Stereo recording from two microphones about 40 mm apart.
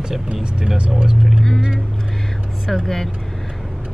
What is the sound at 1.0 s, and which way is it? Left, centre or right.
Speech, centre.